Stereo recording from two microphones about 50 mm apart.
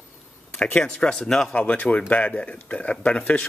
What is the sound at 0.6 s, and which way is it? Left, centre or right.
Speech, left.